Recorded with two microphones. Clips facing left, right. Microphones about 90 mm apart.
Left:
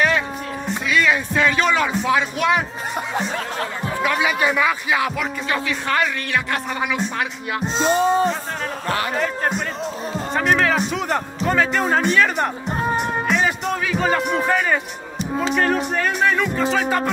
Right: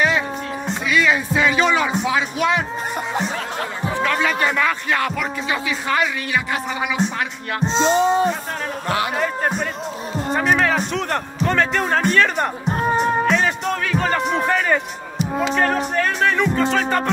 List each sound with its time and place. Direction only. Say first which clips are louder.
0.8 s speech: right 1 dB; centre (ahead or behind)
4.0 s speech: even; 10° left (ahead or behind)
5.5 s speech: even; 5° right (ahead or behind)
7.6 s music: right 2 dB; 25° right (ahead or behind)
10.3 s speech: even; centre (ahead or behind)
13.3 s music: right 1 dB; 5° left (ahead or behind)
15.5 s speech: even; centre (ahead or behind)